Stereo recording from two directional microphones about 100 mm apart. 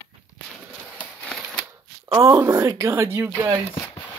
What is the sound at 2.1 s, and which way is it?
Speech, 30° right (ahead or behind).